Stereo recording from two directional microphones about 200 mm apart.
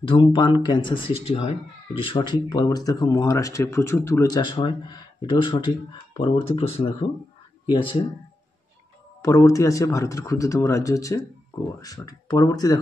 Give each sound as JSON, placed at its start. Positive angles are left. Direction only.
{"t": 0.0, "sound": "speech", "side_deg": 25}
{"t": 9.2, "sound": "speech", "side_deg": 15}